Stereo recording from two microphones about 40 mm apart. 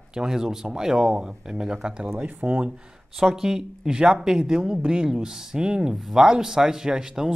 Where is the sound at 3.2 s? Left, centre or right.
Centre.